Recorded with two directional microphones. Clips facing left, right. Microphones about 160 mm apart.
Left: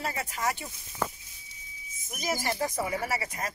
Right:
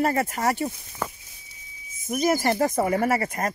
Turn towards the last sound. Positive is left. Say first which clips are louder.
# right 9 dB
turn(degrees=-55)  # may be behind; listen again after turning